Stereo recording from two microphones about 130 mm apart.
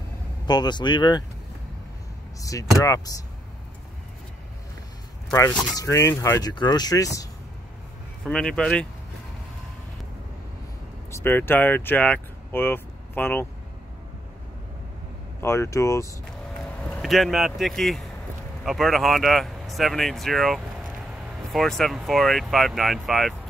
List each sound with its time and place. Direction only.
0.5 s speech: 35° left (ahead or behind)
2.4 s speech: 25° left (ahead or behind)
5.3 s speech: 25° left (ahead or behind)
6.5 s speech: 35° left (ahead or behind)
8.2 s speech: 5° left (ahead or behind)
11.1 s speech: 20° left (ahead or behind)
15.4 s speech: 20° left (ahead or behind)
17.0 s speech: centre (ahead or behind)